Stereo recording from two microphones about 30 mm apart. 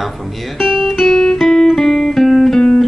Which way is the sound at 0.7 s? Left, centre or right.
Centre.